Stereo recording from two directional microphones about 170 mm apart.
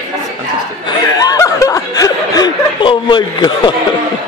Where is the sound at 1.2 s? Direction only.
20° left (ahead or behind).